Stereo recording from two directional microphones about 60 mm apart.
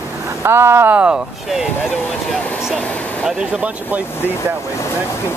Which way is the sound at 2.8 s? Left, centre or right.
Left.